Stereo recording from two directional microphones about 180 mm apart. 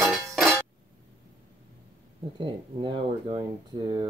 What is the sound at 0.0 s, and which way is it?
Music, centre (ahead or behind).